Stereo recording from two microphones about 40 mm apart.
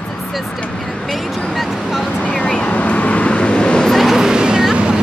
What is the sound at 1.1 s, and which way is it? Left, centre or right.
Speech, centre.